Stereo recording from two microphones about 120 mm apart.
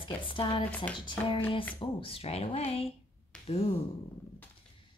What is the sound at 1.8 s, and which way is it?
Speech, 50° left (ahead or behind).